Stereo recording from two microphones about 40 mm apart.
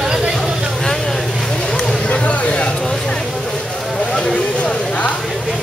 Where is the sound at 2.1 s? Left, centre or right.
Left.